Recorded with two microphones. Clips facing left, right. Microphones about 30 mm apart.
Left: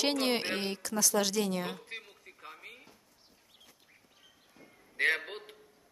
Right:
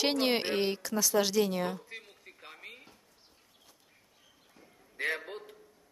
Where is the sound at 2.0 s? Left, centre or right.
Centre.